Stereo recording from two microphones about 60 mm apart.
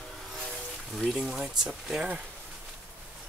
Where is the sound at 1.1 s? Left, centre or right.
Centre.